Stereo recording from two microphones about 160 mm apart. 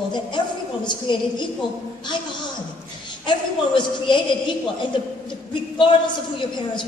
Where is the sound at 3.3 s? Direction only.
30° left (ahead or behind).